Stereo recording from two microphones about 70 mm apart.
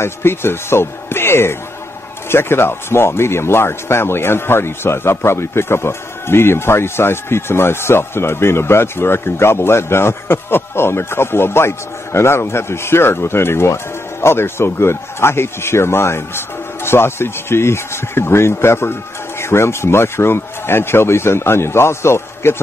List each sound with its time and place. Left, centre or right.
0.0 s a man's voice: left